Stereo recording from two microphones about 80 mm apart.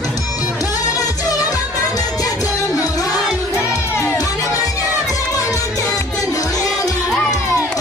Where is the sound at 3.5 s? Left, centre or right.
Left.